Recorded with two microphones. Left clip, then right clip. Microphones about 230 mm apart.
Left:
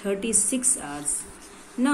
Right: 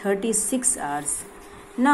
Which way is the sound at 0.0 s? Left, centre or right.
Centre.